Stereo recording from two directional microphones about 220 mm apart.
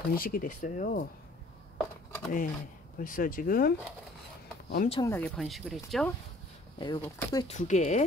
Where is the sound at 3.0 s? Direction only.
40° left (ahead or behind).